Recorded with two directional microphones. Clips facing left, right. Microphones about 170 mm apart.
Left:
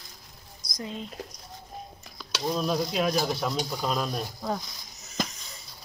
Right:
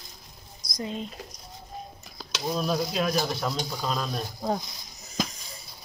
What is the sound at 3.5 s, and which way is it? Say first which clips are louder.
Speech: left 2 dB; 5° left (ahead or behind).